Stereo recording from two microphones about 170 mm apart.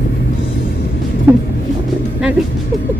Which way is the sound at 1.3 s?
10° right (ahead or behind).